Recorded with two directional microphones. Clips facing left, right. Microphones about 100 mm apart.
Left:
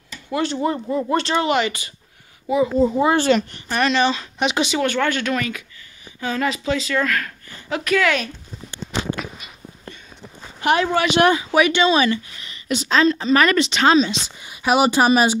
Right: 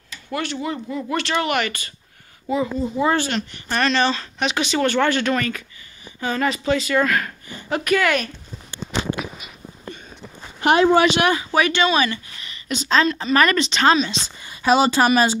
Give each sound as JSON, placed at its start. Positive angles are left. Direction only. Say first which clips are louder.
{"t": 0.3, "sound": "speech", "louder": "left 4 dB", "side_deg": 30}
{"t": 1.3, "sound": "speech", "louder": "even", "side_deg": 20}
{"t": 3.0, "sound": "speech", "louder": "right 3 dB", "side_deg": 25}
{"t": 3.6, "sound": "speech", "louder": "even", "side_deg": 10}
{"t": 4.7, "sound": "a woman's voice", "louder": "right 1 dB", "side_deg": 0}
{"t": 9.1, "sound": "a sound", "louder": "even", "side_deg": -10}
{"t": 10.6, "sound": "speech", "louder": "right 3 dB", "side_deg": -25}
{"t": 11.3, "sound": "speech", "louder": "left 2 dB", "side_deg": 10}